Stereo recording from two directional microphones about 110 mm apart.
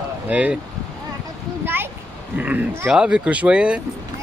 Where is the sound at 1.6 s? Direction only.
20° right (ahead or behind).